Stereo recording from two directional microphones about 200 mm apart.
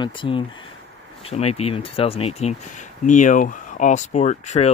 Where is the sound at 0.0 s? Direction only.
25° left (ahead or behind).